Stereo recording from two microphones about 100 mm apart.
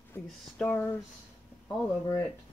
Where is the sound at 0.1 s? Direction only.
15° left (ahead or behind).